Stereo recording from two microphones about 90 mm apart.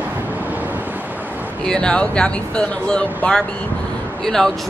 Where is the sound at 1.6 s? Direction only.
10° left (ahead or behind).